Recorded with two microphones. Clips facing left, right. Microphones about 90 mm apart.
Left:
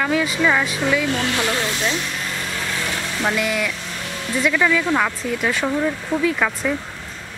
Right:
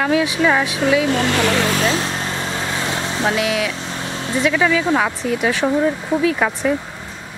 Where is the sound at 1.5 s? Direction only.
90° right.